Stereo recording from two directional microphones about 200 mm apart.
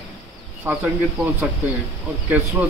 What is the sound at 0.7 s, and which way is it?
Speech, 5° right (ahead or behind).